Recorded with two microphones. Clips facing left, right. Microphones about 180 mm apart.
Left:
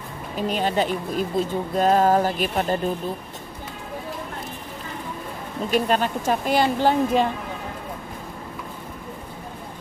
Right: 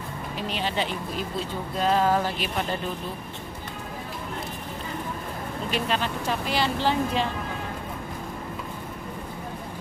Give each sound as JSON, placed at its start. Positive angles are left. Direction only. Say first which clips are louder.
{"t": 0.4, "sound": "speech", "louder": "left 6 dB", "side_deg": 45}
{"t": 5.7, "sound": "speech", "louder": "left 7 dB", "side_deg": 45}